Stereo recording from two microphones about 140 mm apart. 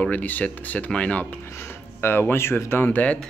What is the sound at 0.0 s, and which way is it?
Speech, 10° left (ahead or behind).